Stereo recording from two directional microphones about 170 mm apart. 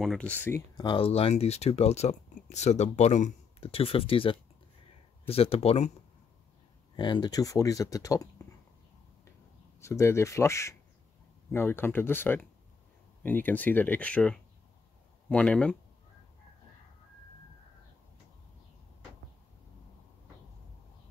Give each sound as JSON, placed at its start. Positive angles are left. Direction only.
{"t": 0.0, "sound": "speech", "side_deg": 5}
{"t": 0.7, "sound": "speech", "side_deg": 30}
{"t": 7.0, "sound": "speech", "side_deg": 25}
{"t": 9.8, "sound": "speech", "side_deg": 15}